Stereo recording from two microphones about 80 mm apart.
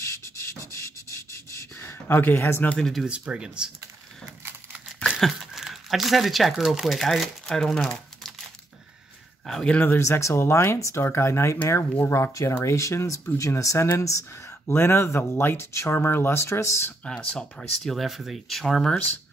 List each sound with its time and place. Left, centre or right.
0.0 s a sound: left
1.5 s gasp: left
2.8 s speech: centre
3.1 s speech: centre
5.1 s crumpling: centre
6.6 s speech: centre
9.5 s speech: centre
9.8 s speech: left
17.0 s speech: centre